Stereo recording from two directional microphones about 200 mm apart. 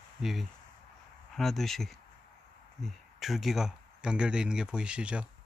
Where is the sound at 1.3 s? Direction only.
Centre (ahead or behind).